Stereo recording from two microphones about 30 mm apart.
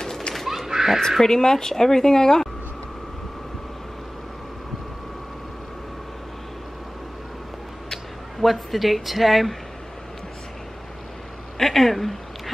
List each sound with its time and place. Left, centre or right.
0.7 s a sound: centre
1.2 s a woman's voice: centre
8.4 s speech: centre
11.5 s speech: centre